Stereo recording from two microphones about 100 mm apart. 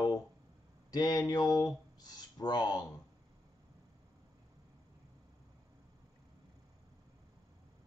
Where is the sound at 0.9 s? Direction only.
40° left (ahead or behind).